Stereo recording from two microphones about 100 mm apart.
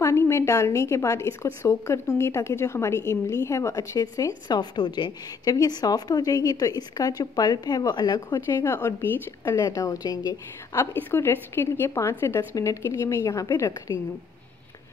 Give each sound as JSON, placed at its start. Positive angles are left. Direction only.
{"t": 0.0, "sound": "a woman's voice", "side_deg": 30}
{"t": 4.5, "sound": "a woman's voice", "side_deg": 50}
{"t": 8.5, "sound": "a woman's voice", "side_deg": 25}
{"t": 10.9, "sound": "a woman's voice", "side_deg": 20}